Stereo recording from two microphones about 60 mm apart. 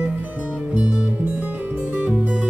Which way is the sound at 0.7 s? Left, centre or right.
Right.